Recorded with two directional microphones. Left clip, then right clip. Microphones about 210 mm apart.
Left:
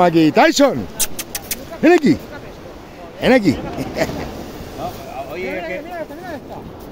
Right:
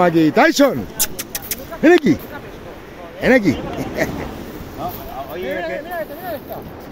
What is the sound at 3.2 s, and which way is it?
Speech, 5° left (ahead or behind).